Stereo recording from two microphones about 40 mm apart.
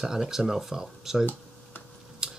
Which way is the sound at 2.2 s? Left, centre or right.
Right.